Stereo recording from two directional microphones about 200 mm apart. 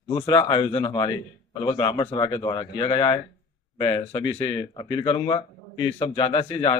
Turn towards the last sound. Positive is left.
turn(degrees=25)  # may be behind; listen again after turning